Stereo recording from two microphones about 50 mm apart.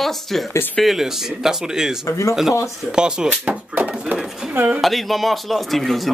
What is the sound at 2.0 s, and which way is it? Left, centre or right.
Speech, left.